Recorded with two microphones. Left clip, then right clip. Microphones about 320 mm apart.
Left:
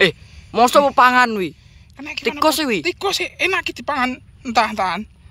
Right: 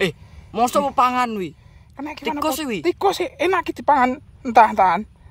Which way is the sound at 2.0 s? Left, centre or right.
Right.